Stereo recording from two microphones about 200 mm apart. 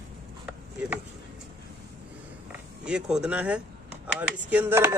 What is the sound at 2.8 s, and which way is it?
Speech, 5° right (ahead or behind).